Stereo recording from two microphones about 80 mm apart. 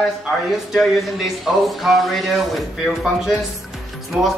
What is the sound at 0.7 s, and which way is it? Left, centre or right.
Speech, centre.